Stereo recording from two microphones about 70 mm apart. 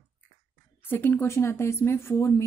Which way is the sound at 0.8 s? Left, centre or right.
Left.